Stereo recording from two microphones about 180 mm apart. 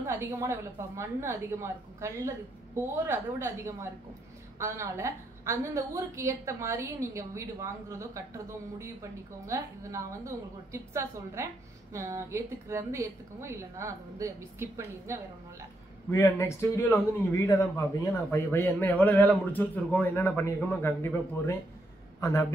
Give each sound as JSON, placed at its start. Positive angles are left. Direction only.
{"t": 0.0, "sound": "a woman's voice", "side_deg": -15}
{"t": 16.1, "sound": "a man's voice", "side_deg": 15}